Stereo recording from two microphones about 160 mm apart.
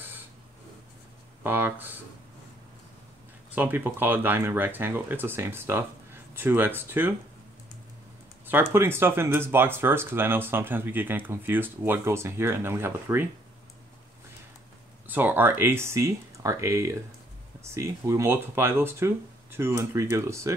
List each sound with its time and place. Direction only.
1.4 s speech: 10° right (ahead or behind)
3.5 s speech: 10° right (ahead or behind)
8.5 s speech: 15° right (ahead or behind)
15.0 s speech: 10° right (ahead or behind)